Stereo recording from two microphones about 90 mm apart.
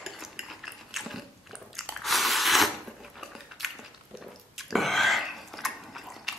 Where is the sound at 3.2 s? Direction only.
Centre (ahead or behind).